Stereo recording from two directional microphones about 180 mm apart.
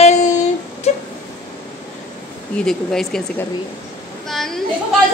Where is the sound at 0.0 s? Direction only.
40° left (ahead or behind).